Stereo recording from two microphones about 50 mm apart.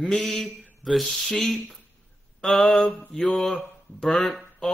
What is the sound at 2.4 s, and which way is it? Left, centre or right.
Mantra, centre.